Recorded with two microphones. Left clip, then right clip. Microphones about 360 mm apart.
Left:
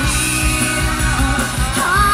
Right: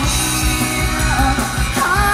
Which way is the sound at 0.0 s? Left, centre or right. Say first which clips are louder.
Left 1 dB; centre.